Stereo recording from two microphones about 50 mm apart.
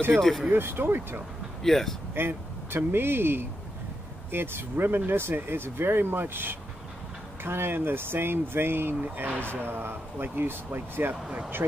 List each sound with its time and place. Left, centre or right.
0.2 s speech: centre
0.5 s speech: right
1.6 s speech: centre
2.1 s speech: right
9.0 s speech: right
11.2 s speech: centre